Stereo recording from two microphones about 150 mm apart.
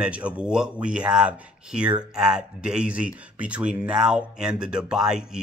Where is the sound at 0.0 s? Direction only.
5° right (ahead or behind).